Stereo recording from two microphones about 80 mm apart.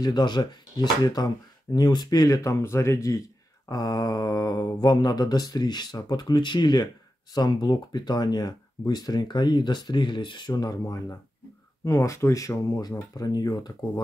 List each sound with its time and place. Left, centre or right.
0.0 s speech: left
10.5 s speech: left